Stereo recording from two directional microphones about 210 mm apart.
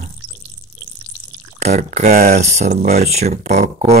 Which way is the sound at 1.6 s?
35° right (ahead or behind).